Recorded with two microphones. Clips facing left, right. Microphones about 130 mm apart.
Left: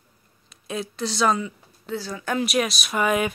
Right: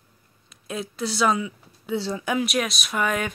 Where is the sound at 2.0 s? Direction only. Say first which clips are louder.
Right 5 dB; 25° right (ahead or behind).